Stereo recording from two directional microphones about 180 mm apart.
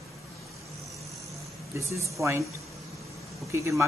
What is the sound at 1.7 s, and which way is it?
Speech, 15° right (ahead or behind).